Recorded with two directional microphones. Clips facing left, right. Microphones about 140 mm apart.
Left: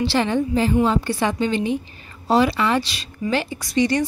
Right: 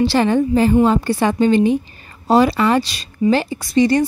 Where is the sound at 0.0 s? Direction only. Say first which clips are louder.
Right 5 dB; 45° right (ahead or behind).